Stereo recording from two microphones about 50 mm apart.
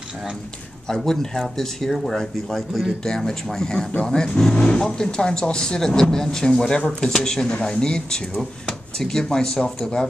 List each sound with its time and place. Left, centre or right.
0.8 s speech: centre